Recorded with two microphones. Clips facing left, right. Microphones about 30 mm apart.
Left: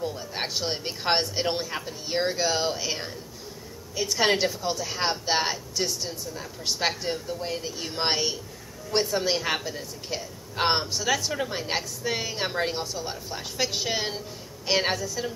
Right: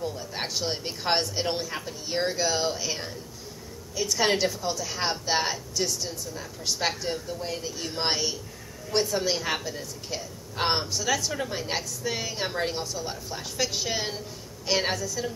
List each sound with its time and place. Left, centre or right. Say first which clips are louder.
0.0 s a woman's voice: left 1 dB; centre